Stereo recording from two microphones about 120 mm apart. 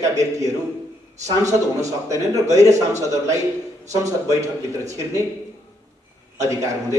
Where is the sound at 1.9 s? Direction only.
30° right (ahead or behind).